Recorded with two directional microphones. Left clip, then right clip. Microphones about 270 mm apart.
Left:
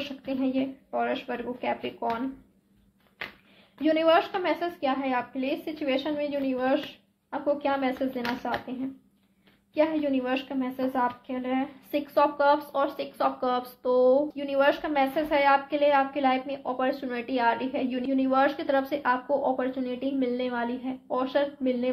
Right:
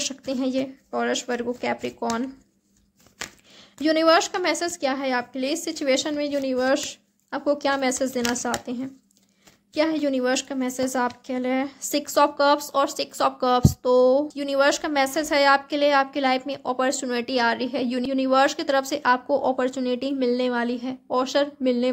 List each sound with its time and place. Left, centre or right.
0.2 s a woman's voice: right
3.7 s a woman's voice: right